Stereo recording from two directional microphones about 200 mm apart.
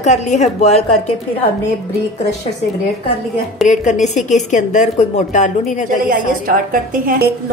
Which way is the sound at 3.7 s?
40° left (ahead or behind).